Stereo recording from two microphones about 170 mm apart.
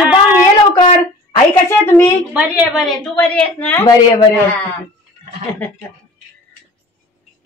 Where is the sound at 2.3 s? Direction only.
10° right (ahead or behind); by 3.9 s 10° left (ahead or behind).